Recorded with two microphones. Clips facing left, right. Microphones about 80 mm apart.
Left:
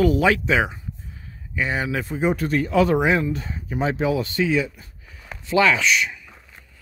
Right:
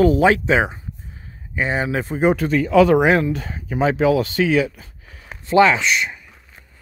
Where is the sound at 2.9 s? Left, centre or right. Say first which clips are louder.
Right 4 dB; right.